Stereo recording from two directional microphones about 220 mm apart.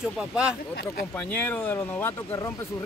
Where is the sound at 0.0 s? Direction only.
5° right (ahead or behind).